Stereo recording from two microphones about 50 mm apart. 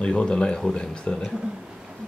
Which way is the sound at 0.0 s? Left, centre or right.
Centre.